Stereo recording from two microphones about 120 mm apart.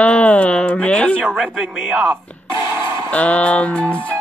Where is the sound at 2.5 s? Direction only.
25° right (ahead or behind).